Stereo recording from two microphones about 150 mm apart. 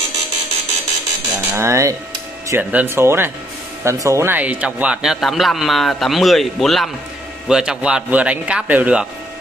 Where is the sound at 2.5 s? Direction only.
10° right (ahead or behind).